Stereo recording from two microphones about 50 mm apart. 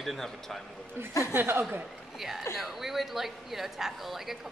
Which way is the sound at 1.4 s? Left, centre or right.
Right.